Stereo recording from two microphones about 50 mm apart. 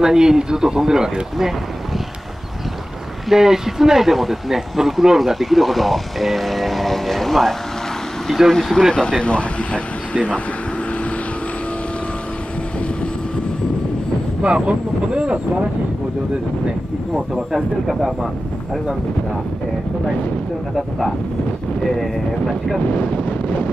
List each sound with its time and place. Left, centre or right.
0.0 s speech: centre
3.3 s speech: centre; by 10.4 s left
14.4 s speech: right
17.1 s speech: centre
21.9 s speech: centre
22.9 s speech: left